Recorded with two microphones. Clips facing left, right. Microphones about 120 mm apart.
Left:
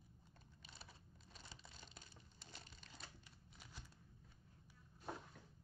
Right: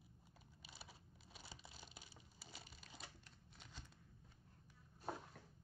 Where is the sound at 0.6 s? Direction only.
5° right (ahead or behind).